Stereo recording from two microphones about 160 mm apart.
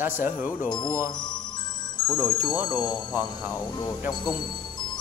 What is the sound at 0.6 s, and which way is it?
Speech, 25° left (ahead or behind).